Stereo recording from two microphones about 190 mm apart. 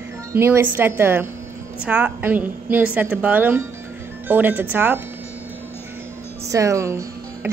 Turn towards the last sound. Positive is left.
turn(degrees=-15)  # may be behind; listen again after turning